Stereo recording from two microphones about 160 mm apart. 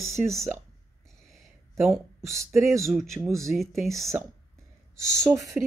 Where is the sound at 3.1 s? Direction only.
15° right (ahead or behind).